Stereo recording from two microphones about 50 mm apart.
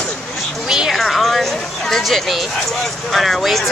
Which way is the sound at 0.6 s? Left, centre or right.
Centre.